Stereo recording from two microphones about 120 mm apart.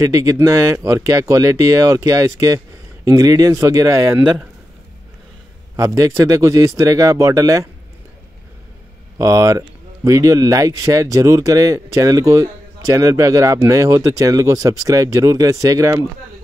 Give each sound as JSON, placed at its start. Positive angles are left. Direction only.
{"t": 0.0, "sound": "speech", "side_deg": -25}
{"t": 5.8, "sound": "speech", "side_deg": -25}
{"t": 9.2, "sound": "speech", "side_deg": -25}